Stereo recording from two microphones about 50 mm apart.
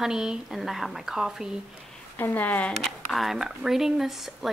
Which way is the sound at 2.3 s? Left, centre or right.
Left.